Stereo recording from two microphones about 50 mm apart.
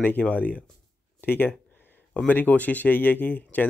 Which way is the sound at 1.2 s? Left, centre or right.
Left.